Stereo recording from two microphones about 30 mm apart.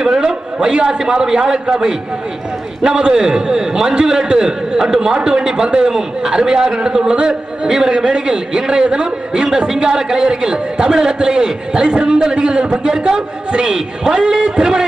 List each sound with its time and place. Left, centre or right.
1.0 s a man's voice: right